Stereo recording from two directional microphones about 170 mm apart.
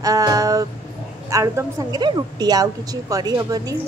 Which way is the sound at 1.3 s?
20° right (ahead or behind).